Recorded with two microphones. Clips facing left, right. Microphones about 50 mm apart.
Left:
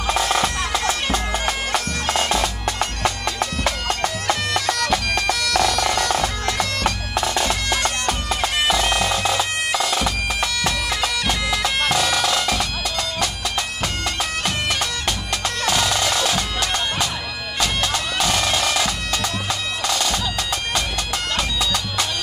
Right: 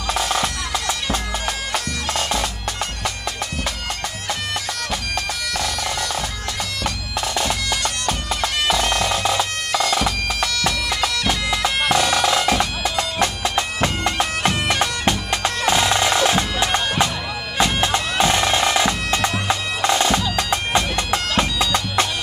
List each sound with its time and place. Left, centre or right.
0.1 s bagpipes: centre
0.7 s music: left
1.4 s bagpipes: left
3.6 s bagpipes: left
7.2 s bagpipes: left
8.6 s bagpipes: centre; by 22.0 s right